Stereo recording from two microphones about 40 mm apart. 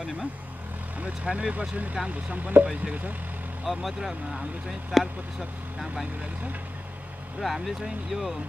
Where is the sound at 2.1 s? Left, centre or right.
Right.